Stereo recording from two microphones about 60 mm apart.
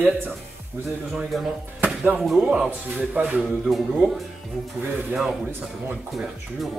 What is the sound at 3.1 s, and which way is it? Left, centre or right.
Speech, right.